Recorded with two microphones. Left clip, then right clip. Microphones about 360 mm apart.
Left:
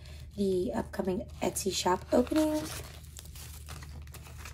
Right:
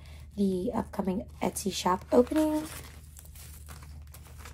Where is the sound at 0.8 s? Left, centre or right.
Centre.